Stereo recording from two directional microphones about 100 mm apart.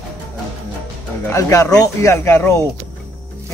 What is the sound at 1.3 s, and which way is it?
Speech, 30° left (ahead or behind).